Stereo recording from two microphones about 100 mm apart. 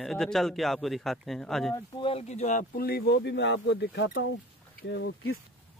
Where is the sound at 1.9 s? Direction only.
65° left (ahead or behind).